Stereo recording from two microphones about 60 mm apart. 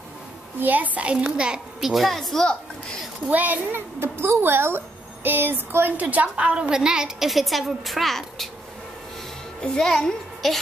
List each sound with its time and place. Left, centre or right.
0.6 s a woman's voice: right
1.8 s a child's voice: centre
3.3 s a woman's voice: right
4.0 s a woman's voice: right; by 8.5 s centre
9.6 s a child's voice: centre